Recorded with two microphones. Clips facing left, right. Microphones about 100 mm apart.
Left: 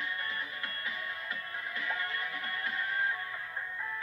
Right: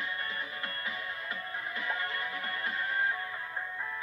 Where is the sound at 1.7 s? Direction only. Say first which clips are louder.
Right 1 dB; 20° right (ahead or behind).